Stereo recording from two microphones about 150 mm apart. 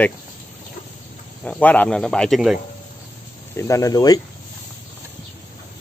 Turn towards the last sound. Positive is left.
turn(degrees=25)  # may be behind; listen again after turning